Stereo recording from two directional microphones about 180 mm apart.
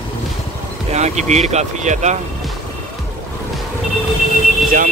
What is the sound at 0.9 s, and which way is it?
Speech, 40° right (ahead or behind).